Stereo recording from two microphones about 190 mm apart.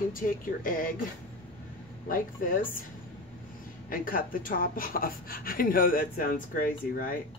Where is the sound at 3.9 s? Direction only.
50° left (ahead or behind).